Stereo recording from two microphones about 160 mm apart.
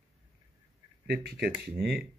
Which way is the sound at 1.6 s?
75° right (ahead or behind).